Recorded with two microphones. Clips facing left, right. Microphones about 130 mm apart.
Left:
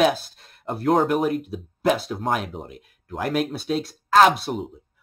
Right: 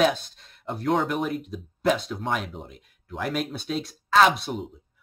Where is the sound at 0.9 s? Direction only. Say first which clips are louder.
Left 7 dB; 50° left (ahead or behind).